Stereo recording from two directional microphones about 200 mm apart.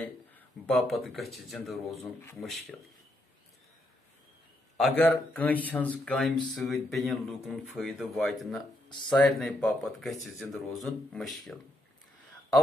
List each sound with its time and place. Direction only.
0.3 s speech: 5° left (ahead or behind)
4.7 s speech: 5° left (ahead or behind)
8.8 s a sound: 20° left (ahead or behind)
9.1 s speech: centre (ahead or behind)